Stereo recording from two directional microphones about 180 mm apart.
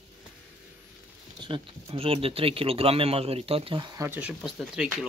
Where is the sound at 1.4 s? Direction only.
30° right (ahead or behind).